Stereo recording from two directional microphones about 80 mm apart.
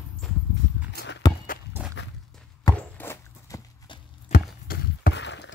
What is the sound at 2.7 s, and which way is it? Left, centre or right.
Walk, left.